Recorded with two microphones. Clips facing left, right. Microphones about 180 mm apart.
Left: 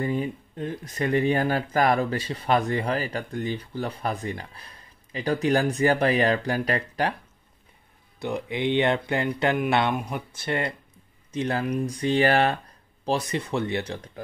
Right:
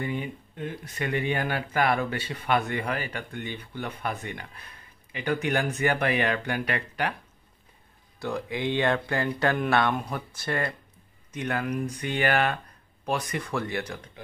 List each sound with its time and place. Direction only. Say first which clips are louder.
0.0 s speech: left 5 dB; 35° left (ahead or behind)
8.2 s speech: left 2 dB; 20° left (ahead or behind)